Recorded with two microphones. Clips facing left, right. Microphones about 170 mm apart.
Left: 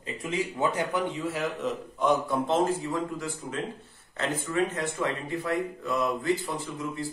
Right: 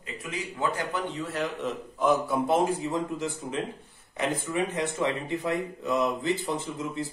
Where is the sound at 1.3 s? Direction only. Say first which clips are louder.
Even; centre (ahead or behind).